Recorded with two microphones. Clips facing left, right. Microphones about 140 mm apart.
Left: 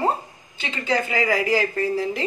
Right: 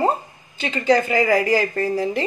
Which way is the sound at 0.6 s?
40° right (ahead or behind).